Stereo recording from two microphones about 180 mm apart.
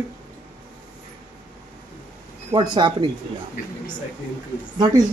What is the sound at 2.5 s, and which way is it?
Speech, 25° right (ahead or behind).